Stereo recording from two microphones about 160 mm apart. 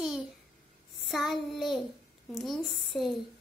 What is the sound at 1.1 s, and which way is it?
A child's voice, centre (ahead or behind).